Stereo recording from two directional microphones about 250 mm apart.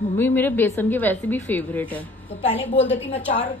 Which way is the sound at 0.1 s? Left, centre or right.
Centre.